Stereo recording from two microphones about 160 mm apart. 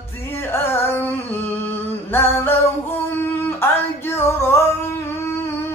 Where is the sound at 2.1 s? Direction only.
15° left (ahead or behind).